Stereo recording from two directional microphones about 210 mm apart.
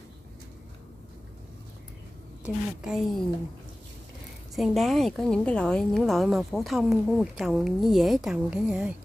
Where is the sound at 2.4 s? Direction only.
5° right (ahead or behind).